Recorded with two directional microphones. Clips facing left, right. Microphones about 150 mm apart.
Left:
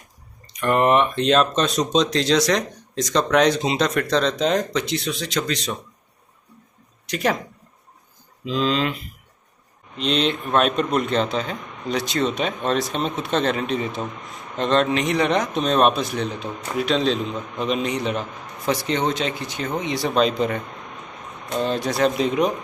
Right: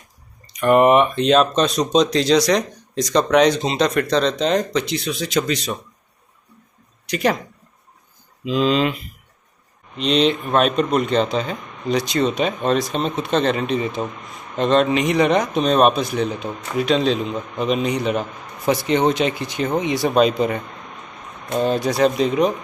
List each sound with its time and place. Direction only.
0.6 s speech: 10° right (ahead or behind)
7.1 s speech: centre (ahead or behind)
8.5 s speech: 15° right (ahead or behind)
9.9 s speech: centre (ahead or behind)
18.7 s speech: 15° right (ahead or behind); by 22.5 s centre (ahead or behind)